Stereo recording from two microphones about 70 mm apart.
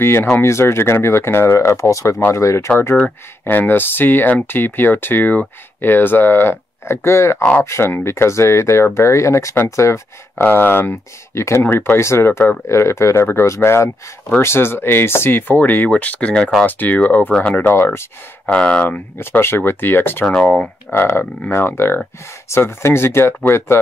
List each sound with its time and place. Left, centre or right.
0.0 s speech: left
3.4 s speech: left
10.3 s speech: left
11.6 s speech: left
18.5 s speech: centre
18.9 s speech: left